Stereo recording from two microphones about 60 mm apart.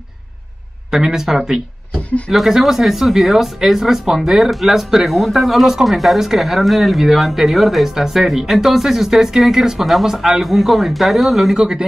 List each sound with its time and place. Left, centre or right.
0.9 s speech: centre
2.0 s speech: left
2.3 s speech: centre